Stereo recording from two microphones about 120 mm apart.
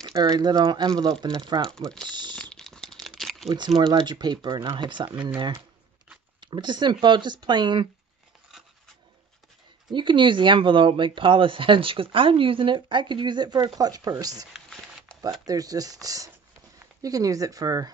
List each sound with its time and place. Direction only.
0.1 s speech: 35° right (ahead or behind)
2.5 s crumpling: 5° left (ahead or behind)
3.7 s speech: 40° right (ahead or behind)
6.4 s speech: 40° right (ahead or behind)
9.8 s speech: 40° right (ahead or behind)
14.5 s a sound: 5° right (ahead or behind)
15.4 s speech: 30° right (ahead or behind)